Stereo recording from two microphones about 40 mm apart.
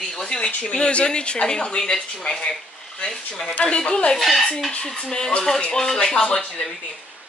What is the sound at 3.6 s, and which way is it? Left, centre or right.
Speech, left.